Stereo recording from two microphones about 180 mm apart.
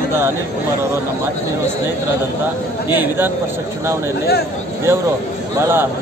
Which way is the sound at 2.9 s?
10° right (ahead or behind).